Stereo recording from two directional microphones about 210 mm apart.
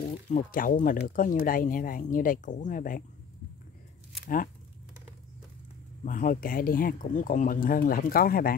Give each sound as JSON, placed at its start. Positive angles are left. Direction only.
{"t": 0.3, "sound": "speech", "side_deg": 40}
{"t": 6.0, "sound": "speech", "side_deg": 40}